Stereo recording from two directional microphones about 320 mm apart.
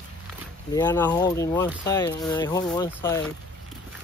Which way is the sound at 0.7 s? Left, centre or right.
Centre.